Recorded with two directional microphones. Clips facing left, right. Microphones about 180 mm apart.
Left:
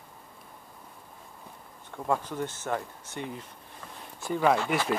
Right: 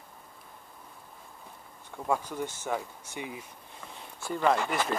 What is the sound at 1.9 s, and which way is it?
Speech, 5° right (ahead or behind).